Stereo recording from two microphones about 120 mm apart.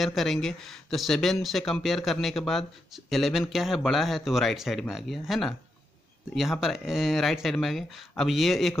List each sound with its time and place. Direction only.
0.0 s speech: centre (ahead or behind)